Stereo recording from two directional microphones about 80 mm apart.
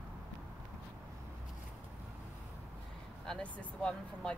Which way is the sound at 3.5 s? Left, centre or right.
Centre.